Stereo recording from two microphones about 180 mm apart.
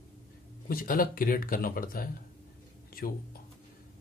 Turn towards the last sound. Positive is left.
turn(degrees=55)  # may be behind; listen again after turning